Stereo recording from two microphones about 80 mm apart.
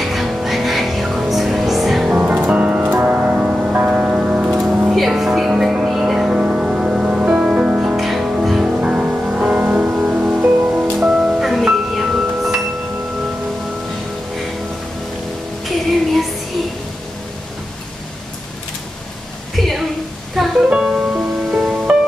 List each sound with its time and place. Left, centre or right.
0.0 s music: centre
2.1 s music: centre
15.6 s music: centre
19.5 s a sound: centre
20.3 s music: centre